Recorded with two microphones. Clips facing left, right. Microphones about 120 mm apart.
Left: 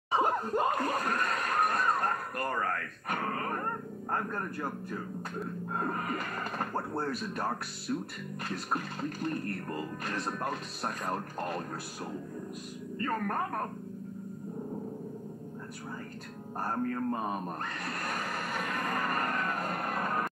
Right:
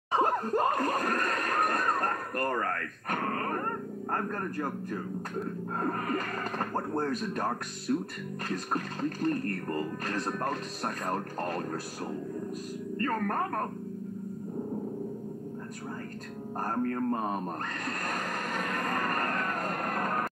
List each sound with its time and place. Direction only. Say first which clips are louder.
0.1 s laughter: right 2 dB; 5° left (ahead or behind)
0.8 s a sound: right 2 dB; 45° right (ahead or behind)
3.1 s speech: right 2 dB; 5° left (ahead or behind)
6.9 s speech: right 3 dB; 5° left (ahead or behind)
13.0 s speech: right 2 dB; 5° left (ahead or behind)
16.7 s speech: right 3 dB; centre (ahead or behind)
17.8 s train: right 2 dB; 5° left (ahead or behind)